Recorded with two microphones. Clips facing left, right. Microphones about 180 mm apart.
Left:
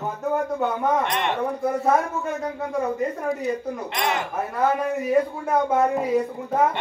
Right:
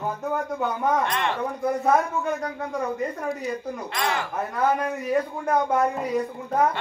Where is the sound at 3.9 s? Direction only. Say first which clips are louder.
Left 1 dB; 20° left (ahead or behind).